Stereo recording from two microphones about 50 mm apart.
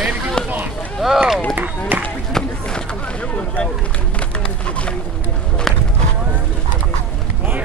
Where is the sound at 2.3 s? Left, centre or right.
Centre.